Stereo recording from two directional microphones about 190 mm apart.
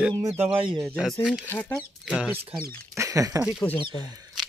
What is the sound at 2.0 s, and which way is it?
Speech, 5° right (ahead or behind).